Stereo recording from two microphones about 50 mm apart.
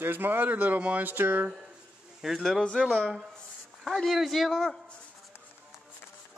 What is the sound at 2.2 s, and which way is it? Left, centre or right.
Speech, centre.